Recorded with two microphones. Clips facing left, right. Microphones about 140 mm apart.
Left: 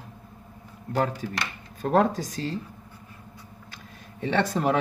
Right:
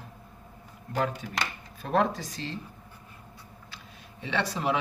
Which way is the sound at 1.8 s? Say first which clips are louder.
Left 4 dB; 40° left (ahead or behind).